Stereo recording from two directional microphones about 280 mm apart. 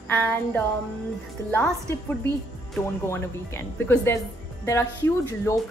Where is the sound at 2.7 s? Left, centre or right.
Centre.